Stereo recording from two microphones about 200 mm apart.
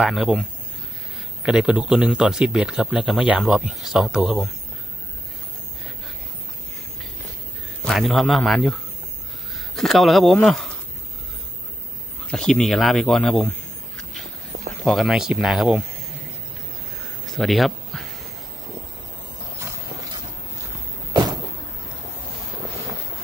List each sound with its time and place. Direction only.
0.0 s speech: centre (ahead or behind)
7.8 s speech: centre (ahead or behind)
12.3 s speech: centre (ahead or behind)
14.7 s speech: centre (ahead or behind)
17.3 s a sound: centre (ahead or behind)
21.1 s vehicle: 20° right (ahead or behind)